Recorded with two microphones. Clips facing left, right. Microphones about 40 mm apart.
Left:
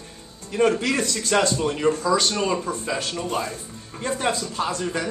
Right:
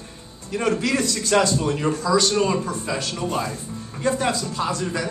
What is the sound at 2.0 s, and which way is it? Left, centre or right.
Speech, left.